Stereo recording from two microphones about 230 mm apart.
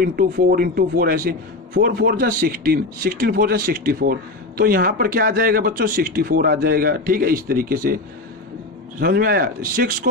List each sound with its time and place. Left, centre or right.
0.0 s a man's voice: right
9.0 s a man's voice: right